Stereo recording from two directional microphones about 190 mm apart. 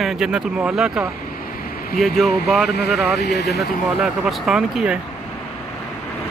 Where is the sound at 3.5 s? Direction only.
Centre (ahead or behind).